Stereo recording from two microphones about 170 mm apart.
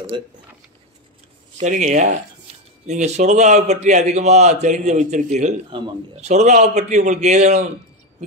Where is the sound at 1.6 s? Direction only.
45° right (ahead or behind).